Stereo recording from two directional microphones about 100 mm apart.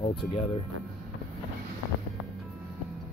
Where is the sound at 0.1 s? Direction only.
60° left (ahead or behind).